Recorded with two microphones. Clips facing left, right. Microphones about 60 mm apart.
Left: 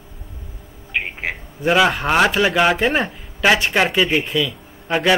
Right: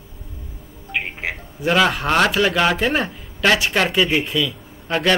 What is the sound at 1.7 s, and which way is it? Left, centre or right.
Speech, centre.